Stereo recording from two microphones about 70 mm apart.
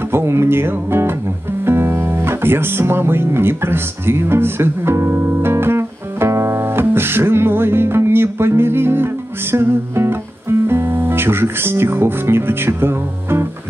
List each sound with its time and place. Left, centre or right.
0.1 s speech: right